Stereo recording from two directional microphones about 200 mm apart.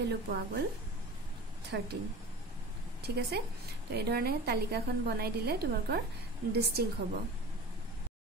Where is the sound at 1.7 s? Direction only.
55° right (ahead or behind).